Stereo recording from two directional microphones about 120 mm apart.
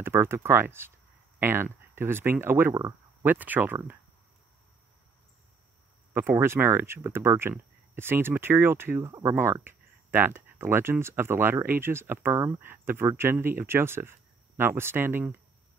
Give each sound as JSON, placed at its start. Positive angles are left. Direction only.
{"t": 0.0, "sound": "speech", "side_deg": -20}
{"t": 3.3, "sound": "speech", "side_deg": -15}
{"t": 6.1, "sound": "speech", "side_deg": -20}